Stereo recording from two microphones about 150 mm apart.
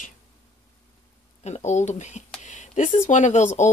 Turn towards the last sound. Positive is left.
turn(degrees=50)  # may be behind; listen again after turning